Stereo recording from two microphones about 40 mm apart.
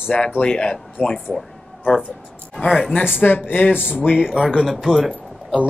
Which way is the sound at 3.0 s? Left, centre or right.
Left.